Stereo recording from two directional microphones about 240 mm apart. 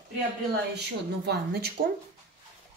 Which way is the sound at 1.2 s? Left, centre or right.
Right.